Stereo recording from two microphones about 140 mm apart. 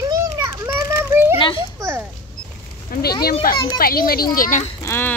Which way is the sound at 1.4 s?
40° left (ahead or behind).